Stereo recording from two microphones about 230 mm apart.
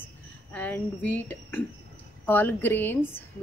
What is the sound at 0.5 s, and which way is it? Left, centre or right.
A woman's voice, centre.